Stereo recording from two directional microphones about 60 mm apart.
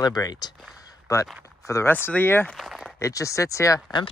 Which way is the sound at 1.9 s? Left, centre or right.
Left.